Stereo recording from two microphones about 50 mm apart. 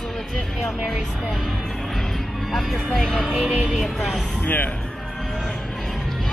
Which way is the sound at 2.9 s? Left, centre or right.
Centre.